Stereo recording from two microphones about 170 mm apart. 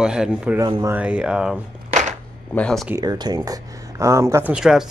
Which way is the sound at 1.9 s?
45° right (ahead or behind).